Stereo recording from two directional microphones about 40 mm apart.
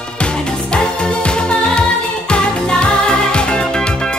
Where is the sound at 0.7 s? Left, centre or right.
Left.